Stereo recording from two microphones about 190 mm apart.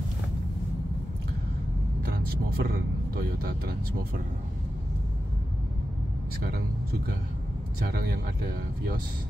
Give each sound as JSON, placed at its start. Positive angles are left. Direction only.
{"t": 2.0, "sound": "speech", "side_deg": -55}
{"t": 6.4, "sound": "speech", "side_deg": -55}